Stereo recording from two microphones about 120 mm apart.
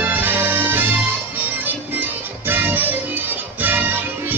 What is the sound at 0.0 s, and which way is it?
Music, 15° right (ahead or behind).